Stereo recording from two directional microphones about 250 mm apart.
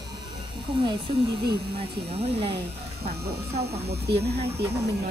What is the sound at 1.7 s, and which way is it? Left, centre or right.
Speech, right.